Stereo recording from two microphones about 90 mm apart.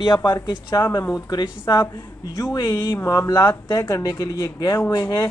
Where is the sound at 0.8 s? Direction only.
25° left (ahead or behind).